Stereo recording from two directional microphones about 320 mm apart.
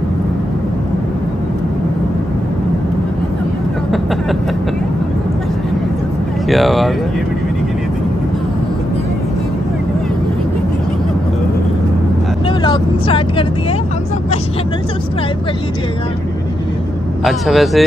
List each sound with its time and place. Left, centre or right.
6.5 s speech: centre
12.4 s speech: centre
17.2 s speech: centre